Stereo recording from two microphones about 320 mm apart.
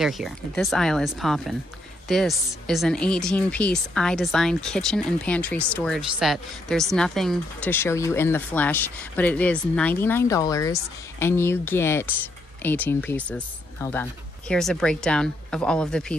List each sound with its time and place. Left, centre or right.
0.0 s a woman's voice: centre